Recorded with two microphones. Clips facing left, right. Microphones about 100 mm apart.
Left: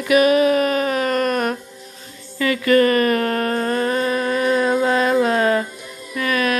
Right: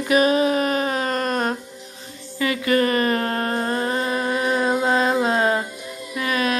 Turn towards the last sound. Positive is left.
turn(degrees=-25)  # may be behind; listen again after turning